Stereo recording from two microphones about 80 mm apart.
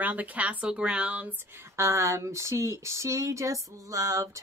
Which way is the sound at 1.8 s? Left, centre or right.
Right.